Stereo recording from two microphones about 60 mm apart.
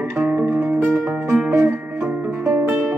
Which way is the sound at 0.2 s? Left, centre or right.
Right.